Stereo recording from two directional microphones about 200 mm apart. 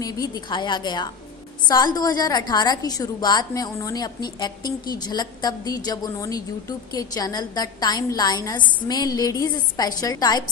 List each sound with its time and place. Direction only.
0.0 s a woman's voice: 20° left (ahead or behind)